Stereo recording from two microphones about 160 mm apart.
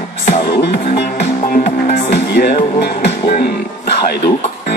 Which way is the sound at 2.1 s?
90° left.